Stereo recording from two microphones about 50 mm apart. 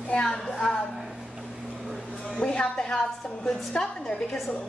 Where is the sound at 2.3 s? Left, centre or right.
Centre.